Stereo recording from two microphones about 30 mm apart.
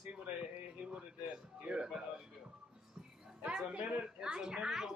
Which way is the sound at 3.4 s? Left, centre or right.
Right.